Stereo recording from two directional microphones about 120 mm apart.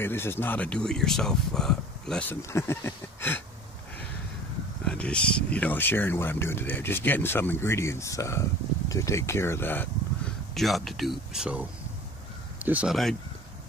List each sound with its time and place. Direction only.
0.0 s speech: 20° left (ahead or behind)
2.2 s speech: 20° left (ahead or behind)
4.8 s speech: 10° left (ahead or behind)
10.5 s speech: centre (ahead or behind)
12.6 s speech: 10° right (ahead or behind)